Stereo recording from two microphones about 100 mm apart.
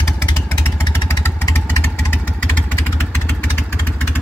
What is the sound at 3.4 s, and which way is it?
Vehicle, 15° left (ahead or behind).